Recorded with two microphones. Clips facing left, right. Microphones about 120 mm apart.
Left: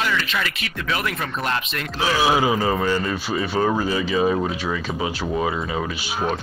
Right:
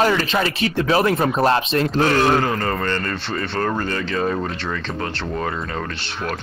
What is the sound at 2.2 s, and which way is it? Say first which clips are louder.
Speech: right 1 dB; 5° left (ahead or behind).